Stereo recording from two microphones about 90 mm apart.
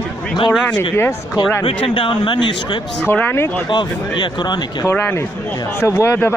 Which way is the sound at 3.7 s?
60° left (ahead or behind).